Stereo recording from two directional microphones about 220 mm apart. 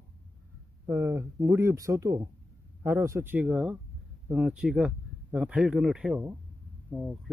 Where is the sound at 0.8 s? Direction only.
10° right (ahead or behind).